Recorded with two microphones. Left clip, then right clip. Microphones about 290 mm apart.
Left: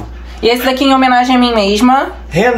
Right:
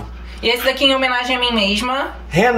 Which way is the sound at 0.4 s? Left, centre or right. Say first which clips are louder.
Left 4 dB; left.